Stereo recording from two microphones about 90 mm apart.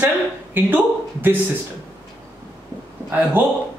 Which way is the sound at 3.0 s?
20° right (ahead or behind).